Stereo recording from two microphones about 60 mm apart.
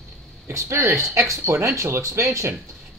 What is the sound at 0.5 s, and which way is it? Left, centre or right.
Speech, right.